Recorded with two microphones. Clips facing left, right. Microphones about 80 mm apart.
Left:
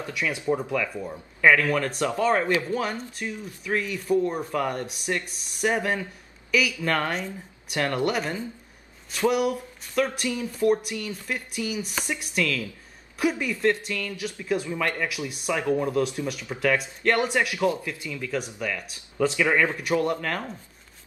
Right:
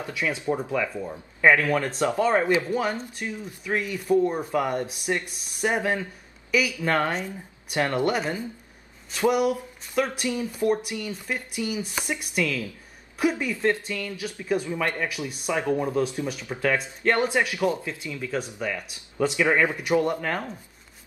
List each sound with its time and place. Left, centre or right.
0.0 s speech: right
9.9 s speech: centre